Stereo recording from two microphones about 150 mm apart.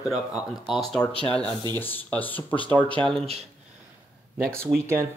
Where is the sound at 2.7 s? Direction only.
35° right (ahead or behind).